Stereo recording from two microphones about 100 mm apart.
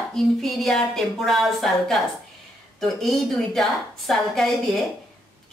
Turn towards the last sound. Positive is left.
turn(degrees=0)  # may be behind; listen again after turning